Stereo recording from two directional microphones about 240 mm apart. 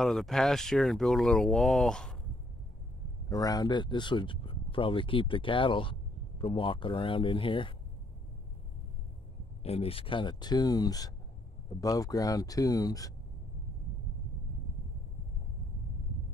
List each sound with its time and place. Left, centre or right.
0.0 s speech: centre
3.3 s speech: centre
9.6 s speech: left